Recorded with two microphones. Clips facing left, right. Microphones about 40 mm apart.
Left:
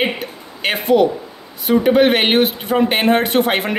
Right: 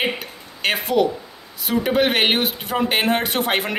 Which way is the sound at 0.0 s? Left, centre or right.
Centre.